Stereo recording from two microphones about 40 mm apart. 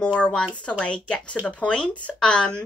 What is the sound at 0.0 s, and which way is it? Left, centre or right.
A woman's voice, left.